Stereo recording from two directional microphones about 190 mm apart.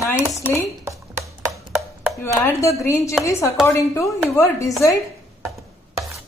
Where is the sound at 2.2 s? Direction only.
15° left (ahead or behind).